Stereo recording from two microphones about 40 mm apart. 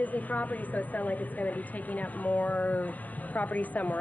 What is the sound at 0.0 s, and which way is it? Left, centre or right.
Speech, left.